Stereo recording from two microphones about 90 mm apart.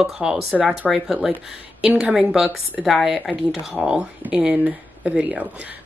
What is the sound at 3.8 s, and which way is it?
Speech, 10° right (ahead or behind).